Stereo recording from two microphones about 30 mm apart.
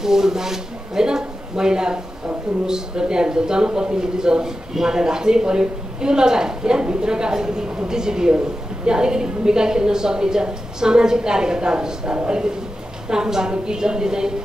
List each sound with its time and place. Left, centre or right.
0.0 s a man's voice: centre